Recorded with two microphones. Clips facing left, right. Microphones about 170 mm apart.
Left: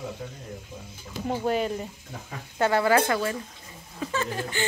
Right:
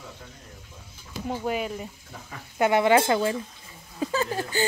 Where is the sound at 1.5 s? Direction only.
5° right (ahead or behind).